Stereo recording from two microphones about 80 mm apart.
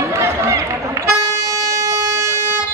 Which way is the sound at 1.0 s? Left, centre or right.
Right.